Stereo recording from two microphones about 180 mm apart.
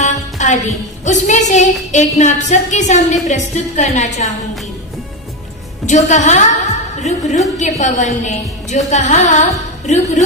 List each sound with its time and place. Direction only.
0.0 s music: 45° left (ahead or behind)
1.0 s a woman's voice: 40° left (ahead or behind)
5.9 s a woman's voice: 40° left (ahead or behind)
7.0 s music: 40° left (ahead or behind)
7.5 s a woman's voice: 40° left (ahead or behind)